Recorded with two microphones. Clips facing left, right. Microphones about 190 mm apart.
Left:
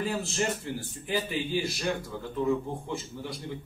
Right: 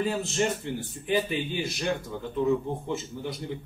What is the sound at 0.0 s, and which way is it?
Speech, 20° right (ahead or behind).